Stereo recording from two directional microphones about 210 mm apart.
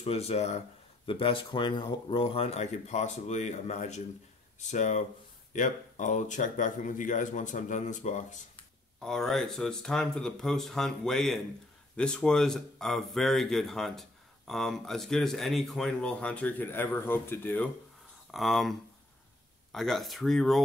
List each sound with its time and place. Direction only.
0.0 s speech: 30° left (ahead or behind)
9.0 s speech: centre (ahead or behind)